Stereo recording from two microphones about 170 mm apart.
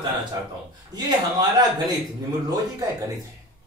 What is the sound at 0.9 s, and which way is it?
Speech, 25° right (ahead or behind).